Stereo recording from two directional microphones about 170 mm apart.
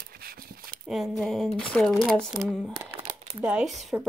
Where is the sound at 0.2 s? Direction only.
60° right (ahead or behind).